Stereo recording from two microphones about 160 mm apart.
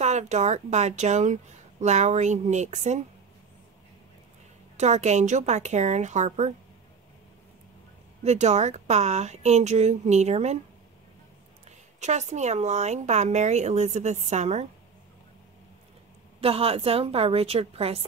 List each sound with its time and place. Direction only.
0.0 s speech: 45° right (ahead or behind)
4.7 s speech: 45° right (ahead or behind)
8.2 s speech: 45° right (ahead or behind)
12.0 s speech: 45° right (ahead or behind)
16.3 s a woman's voice: 35° right (ahead or behind)